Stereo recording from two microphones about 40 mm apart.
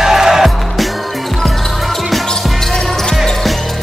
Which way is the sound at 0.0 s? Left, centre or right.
Centre.